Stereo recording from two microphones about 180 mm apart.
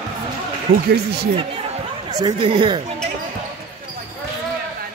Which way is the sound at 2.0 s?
20° right (ahead or behind).